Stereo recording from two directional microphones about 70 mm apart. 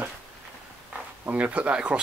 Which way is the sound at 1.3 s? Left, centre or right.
Centre.